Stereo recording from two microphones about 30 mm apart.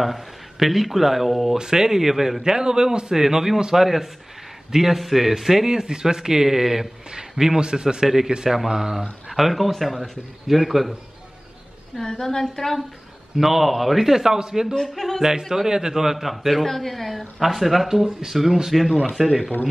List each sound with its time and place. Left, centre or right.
0.0 s speech: centre
1.6 s a man's voice: centre
2.5 s a man's voice: right
3.2 s a man's voice: centre
5.7 s a man's voice: right; by 10.9 s centre
12.0 s a woman's voice: centre
13.4 s a man's voice: centre
14.7 s a woman's voice: centre
15.5 s a man's voice: centre
19.0 s a man's voice: centre